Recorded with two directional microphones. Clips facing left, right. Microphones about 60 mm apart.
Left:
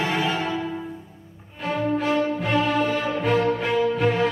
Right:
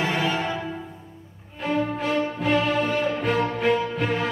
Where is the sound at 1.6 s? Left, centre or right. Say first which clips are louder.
Left 1 dB; centre.